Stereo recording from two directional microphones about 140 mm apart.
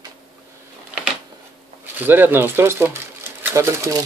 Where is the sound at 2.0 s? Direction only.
15° right (ahead or behind).